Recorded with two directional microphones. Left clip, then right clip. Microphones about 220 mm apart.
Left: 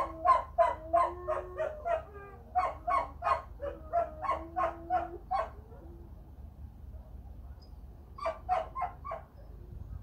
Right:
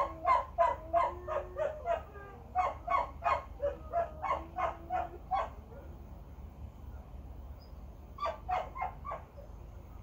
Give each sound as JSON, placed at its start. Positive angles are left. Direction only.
{"t": 0.0, "sound": "a sound", "side_deg": 50}
{"t": 2.5, "sound": "dog", "side_deg": 50}
{"t": 8.2, "sound": "dog", "side_deg": 50}